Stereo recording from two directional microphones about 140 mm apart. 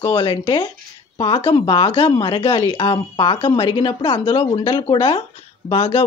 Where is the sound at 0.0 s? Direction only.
35° left (ahead or behind).